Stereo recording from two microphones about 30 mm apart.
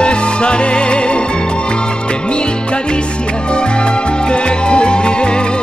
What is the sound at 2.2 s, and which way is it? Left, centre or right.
Music, left.